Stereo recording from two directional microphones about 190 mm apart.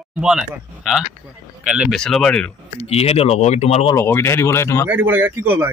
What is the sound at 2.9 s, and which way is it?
Speech, 35° left (ahead or behind).